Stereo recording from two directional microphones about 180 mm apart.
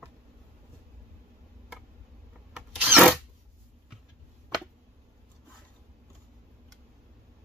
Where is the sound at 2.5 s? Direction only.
Centre (ahead or behind).